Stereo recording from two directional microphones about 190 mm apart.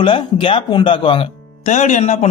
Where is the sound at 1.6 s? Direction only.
40° left (ahead or behind).